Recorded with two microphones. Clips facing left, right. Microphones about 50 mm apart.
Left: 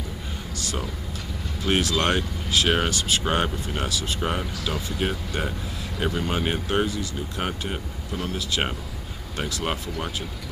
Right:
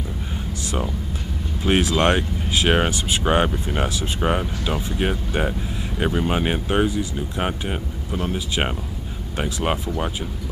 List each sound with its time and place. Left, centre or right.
1.6 s speech: right